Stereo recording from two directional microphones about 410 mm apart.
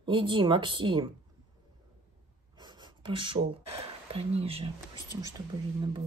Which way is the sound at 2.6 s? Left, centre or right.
Centre.